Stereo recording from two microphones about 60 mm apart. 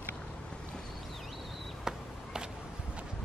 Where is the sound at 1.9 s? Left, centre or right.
Centre.